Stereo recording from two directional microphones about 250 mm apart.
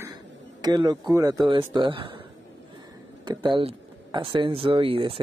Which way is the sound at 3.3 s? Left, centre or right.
Centre.